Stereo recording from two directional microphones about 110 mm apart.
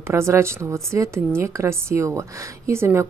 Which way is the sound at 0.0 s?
25° right (ahead or behind).